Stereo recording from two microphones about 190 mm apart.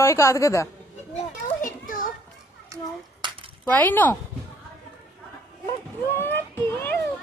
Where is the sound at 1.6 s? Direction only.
45° left (ahead or behind).